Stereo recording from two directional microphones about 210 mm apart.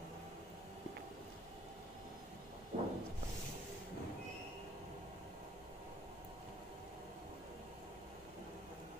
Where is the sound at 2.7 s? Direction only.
30° right (ahead or behind).